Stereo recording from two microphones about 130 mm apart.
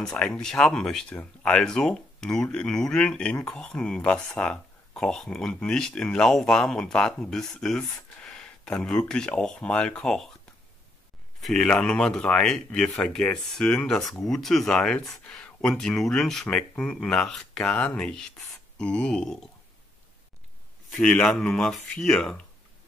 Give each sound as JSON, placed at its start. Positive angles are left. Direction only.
{"t": 0.0, "sound": "speech", "side_deg": 5}
{"t": 11.4, "sound": "speech", "side_deg": 5}
{"t": 20.9, "sound": "speech", "side_deg": 5}